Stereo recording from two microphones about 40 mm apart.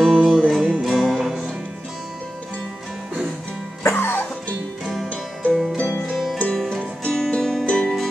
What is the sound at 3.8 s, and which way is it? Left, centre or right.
Music, left.